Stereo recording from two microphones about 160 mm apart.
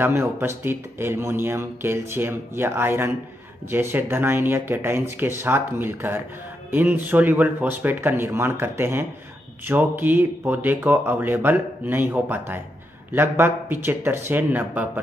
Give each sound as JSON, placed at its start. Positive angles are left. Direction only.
{"t": 0.0, "sound": "speech", "side_deg": -15}